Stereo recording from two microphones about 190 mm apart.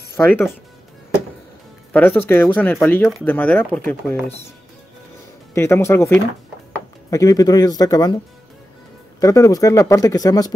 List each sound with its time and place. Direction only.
1.9 s speech: 10° left (ahead or behind)
5.5 s speech: 15° left (ahead or behind)
9.2 s speech: 20° left (ahead or behind)